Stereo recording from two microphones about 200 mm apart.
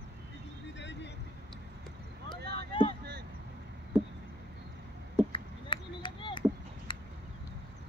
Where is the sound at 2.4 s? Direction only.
55° right (ahead or behind).